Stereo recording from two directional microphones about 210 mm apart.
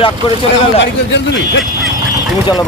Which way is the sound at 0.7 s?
60° left (ahead or behind).